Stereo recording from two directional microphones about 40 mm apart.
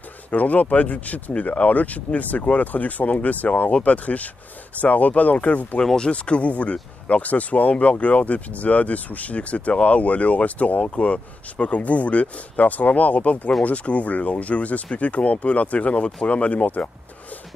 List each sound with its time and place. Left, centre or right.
0.3 s speech: left
5.9 s speech: left
7.7 s speech: left